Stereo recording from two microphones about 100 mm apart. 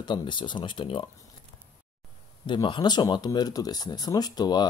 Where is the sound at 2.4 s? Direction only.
55° left (ahead or behind).